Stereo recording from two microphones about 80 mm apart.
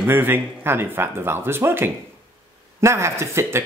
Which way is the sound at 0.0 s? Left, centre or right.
Right.